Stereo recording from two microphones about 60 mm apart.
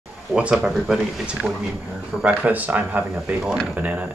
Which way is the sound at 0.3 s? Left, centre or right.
Centre.